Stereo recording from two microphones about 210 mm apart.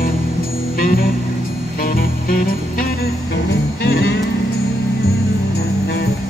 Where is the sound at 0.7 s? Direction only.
45° left (ahead or behind).